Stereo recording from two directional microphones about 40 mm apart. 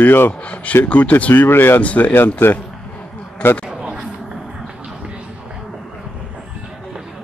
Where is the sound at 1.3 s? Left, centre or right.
Left.